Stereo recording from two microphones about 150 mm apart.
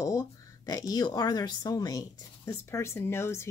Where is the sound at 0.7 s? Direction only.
25° left (ahead or behind).